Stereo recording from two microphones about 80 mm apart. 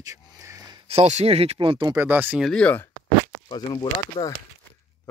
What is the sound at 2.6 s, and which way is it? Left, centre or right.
Speech, centre.